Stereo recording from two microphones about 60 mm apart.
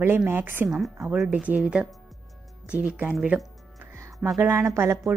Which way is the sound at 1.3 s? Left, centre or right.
Right.